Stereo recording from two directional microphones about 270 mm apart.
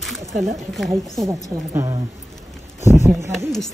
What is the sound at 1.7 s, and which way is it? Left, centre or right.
Speech, centre.